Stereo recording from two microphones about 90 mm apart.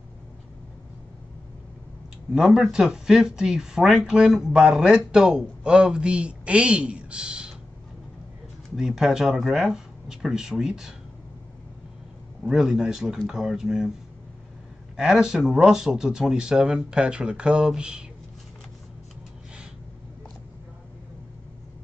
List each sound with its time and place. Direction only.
2.3 s speech: centre (ahead or behind)
8.7 s speech: 5° right (ahead or behind)
12.4 s speech: 5° right (ahead or behind)
15.0 s speech: 10° right (ahead or behind)